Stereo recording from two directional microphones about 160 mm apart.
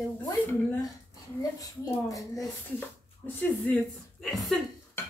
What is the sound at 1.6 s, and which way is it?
Speech, 20° left (ahead or behind).